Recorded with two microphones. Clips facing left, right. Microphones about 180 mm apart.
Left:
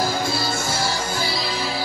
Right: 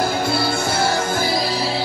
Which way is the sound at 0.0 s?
60° right (ahead or behind).